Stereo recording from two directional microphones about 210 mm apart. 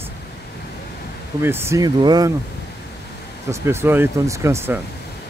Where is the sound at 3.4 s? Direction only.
10° right (ahead or behind).